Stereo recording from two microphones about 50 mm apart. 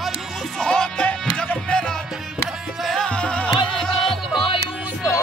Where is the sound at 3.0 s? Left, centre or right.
Left.